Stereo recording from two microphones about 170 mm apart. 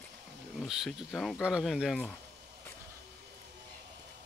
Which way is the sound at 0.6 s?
Centre (ahead or behind).